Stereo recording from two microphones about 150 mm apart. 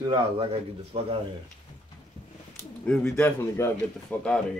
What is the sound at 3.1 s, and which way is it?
A man's voice, 15° left (ahead or behind).